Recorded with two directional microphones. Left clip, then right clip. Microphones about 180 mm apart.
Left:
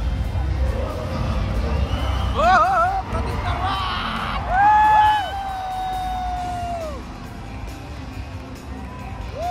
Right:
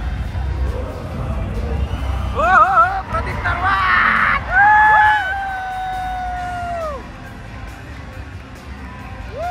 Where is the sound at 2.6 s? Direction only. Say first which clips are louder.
Right 5 dB; 10° left (ahead or behind).